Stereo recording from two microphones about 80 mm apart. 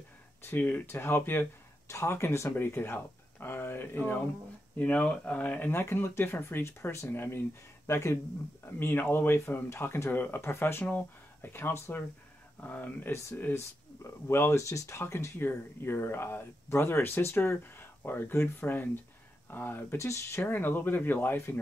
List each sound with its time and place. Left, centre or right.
0.4 s speech: left
8.7 s speech: left
14.2 s speech: left
20.0 s speech: left
20.4 s speech: left